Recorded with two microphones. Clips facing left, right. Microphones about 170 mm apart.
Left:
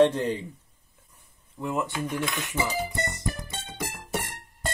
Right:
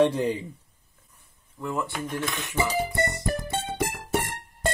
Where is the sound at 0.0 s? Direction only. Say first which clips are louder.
Left 1 dB; 10° right (ahead or behind).